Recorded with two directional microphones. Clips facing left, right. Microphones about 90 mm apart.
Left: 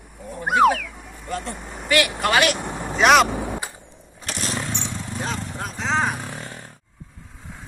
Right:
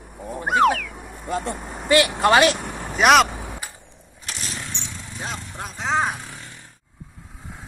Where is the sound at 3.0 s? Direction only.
Centre (ahead or behind).